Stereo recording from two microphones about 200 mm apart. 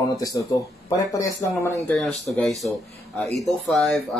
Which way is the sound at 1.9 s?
5° left (ahead or behind).